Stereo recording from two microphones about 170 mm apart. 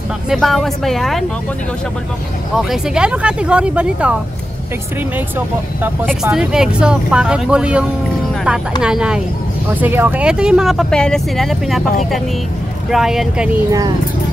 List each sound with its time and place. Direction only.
0.3 s speech: centre (ahead or behind)
2.5 s speech: 5° right (ahead or behind)
5.8 s speech: 10° right (ahead or behind)
8.8 s speech: 5° right (ahead or behind)
12.9 s speech: centre (ahead or behind)
13.7 s speech: 20° right (ahead or behind)